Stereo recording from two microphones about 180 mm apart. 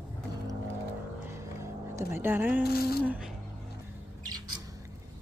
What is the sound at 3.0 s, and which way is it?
Speech, 10° right (ahead or behind).